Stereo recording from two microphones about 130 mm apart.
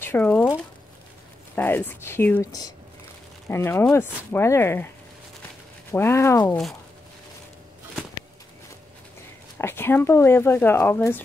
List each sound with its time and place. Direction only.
0.0 s a sound: 15° left (ahead or behind)
1.5 s speech: 15° left (ahead or behind)
5.9 s speech: 20° left (ahead or behind)
9.6 s speech: 20° left (ahead or behind)